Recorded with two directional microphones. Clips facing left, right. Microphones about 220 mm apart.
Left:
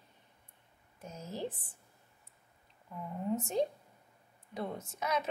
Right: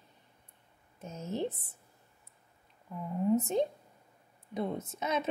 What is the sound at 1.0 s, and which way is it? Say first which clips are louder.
Speech: right 5 dB; 25° right (ahead or behind).